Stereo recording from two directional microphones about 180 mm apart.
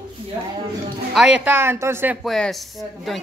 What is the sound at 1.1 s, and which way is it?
Speech, 5° right (ahead or behind).